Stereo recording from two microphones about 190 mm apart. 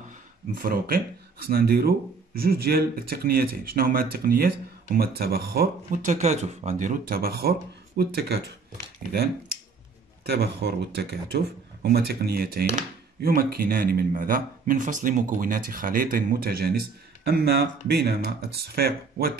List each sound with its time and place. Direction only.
0.6 s speech: 50° right (ahead or behind)
6.0 s speech: 35° right (ahead or behind); by 8.4 s 60° right (ahead or behind)
10.2 s speech: 60° right (ahead or behind)